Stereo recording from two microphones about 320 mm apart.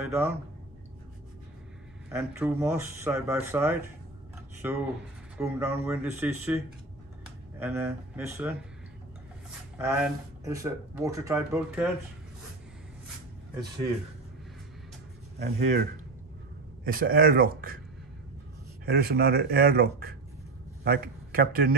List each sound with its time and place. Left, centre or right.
0.0 s speech: centre
2.1 s speech: centre
9.8 s speech: centre
15.3 s speech: right
16.8 s speech: right
18.9 s a man's voice: right